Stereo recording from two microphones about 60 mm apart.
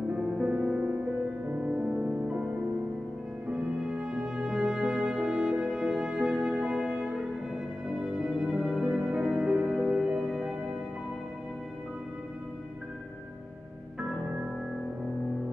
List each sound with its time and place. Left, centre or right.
0.4 s music: centre